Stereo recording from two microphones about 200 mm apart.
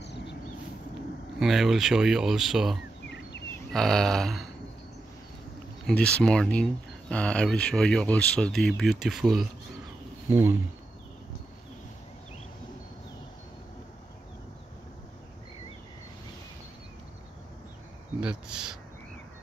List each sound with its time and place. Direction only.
0.0 s a sound: 60° left (ahead or behind)
1.4 s speech: centre (ahead or behind)
5.9 s speech: 5° left (ahead or behind); by 10.6 s 10° right (ahead or behind)
18.2 s speech: 5° right (ahead or behind)